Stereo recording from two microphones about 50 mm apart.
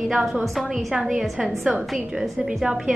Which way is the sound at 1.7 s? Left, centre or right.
Centre.